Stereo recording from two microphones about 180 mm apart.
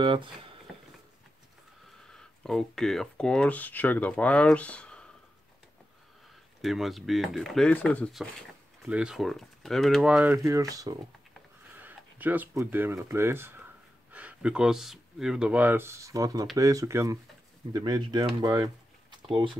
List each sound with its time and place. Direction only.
0.0 s speech: 25° right (ahead or behind)
2.1 s speech: 5° left (ahead or behind)
6.6 s speech: centre (ahead or behind); by 19.5 s 25° right (ahead or behind)